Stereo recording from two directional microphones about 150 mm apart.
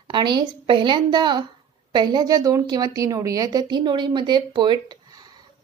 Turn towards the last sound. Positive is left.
turn(degrees=-30)  # may be behind; listen again after turning